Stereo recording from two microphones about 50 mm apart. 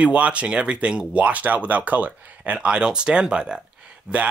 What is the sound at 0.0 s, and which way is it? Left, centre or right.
Speech, right.